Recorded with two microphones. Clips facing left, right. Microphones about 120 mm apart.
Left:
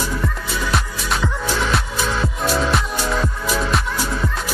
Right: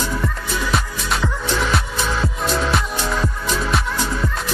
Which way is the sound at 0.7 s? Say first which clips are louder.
Even; centre (ahead or behind).